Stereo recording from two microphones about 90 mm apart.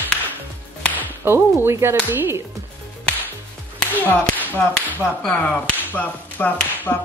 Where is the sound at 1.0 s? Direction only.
25° right (ahead or behind).